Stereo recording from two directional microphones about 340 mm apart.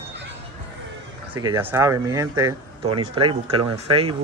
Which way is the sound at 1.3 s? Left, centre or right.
Centre.